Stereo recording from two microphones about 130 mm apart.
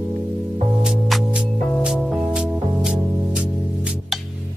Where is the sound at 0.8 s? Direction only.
Centre (ahead or behind).